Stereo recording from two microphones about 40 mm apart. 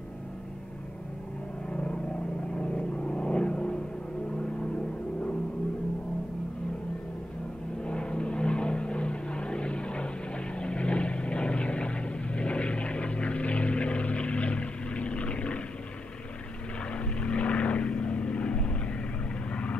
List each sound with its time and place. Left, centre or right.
1.7 s vehicle: left
7.8 s vehicle: left
16.9 s vehicle: left